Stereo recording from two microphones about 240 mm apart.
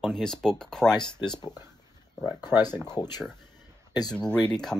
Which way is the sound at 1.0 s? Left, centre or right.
Centre.